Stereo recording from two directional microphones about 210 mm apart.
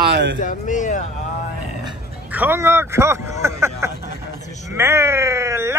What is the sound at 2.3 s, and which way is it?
Speech, 10° right (ahead or behind).